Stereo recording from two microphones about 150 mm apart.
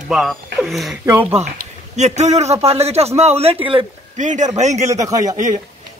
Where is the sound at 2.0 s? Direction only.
50° right (ahead or behind).